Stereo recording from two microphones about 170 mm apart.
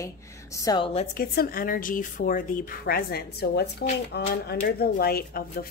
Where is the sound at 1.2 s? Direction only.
60° left (ahead or behind).